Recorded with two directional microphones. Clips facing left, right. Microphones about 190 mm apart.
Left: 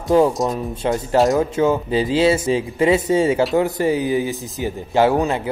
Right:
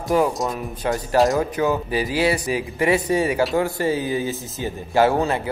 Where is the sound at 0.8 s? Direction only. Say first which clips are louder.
Left 2 dB; 20° left (ahead or behind).